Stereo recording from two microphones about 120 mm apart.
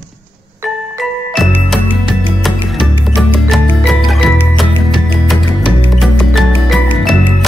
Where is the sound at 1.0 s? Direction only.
Centre (ahead or behind).